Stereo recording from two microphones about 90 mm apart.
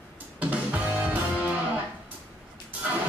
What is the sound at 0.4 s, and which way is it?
Music, 15° right (ahead or behind).